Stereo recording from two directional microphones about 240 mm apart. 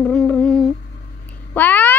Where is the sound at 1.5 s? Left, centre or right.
Centre.